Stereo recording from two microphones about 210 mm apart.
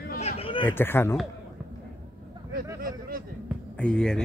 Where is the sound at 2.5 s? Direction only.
45° right (ahead or behind).